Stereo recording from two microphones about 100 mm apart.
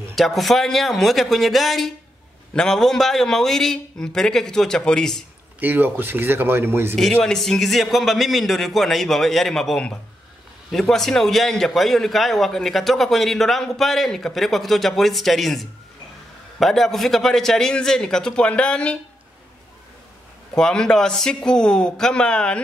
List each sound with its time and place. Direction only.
0.1 s a man's voice: centre (ahead or behind)
5.6 s speech: 20° right (ahead or behind)
7.0 s a man's voice: 5° left (ahead or behind)
20.5 s a man's voice: 5° left (ahead or behind)